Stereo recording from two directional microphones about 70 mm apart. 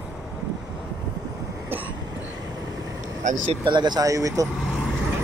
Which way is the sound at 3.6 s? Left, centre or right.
Right.